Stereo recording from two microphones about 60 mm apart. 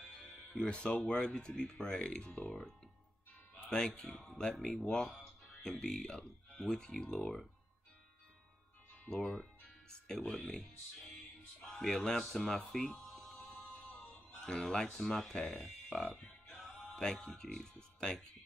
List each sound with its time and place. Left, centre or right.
0.5 s speech: centre
3.5 s music: left
3.8 s speech: centre
4.1 s speech: centre
9.2 s speech: centre
11.7 s speech: centre
13.1 s music: centre
14.4 s speech: centre
16.5 s music: centre
17.0 s speech: centre
17.3 s speech: centre